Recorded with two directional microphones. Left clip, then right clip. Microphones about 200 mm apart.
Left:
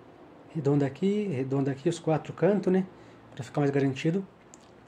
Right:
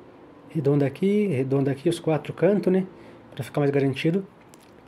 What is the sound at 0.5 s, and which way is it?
Speech, 25° right (ahead or behind).